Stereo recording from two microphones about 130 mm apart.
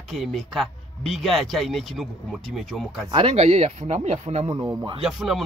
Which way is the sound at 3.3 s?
55° right (ahead or behind).